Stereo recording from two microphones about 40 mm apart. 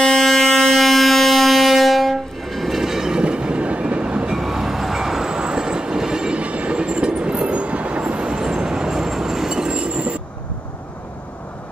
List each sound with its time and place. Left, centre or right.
0.0 s a sound: centre
2.8 s train: centre
3.2 s train: right
4.4 s train: centre
9.6 s train: right